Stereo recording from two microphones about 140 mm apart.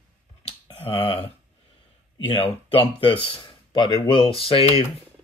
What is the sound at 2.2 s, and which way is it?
Speech, 40° left (ahead or behind).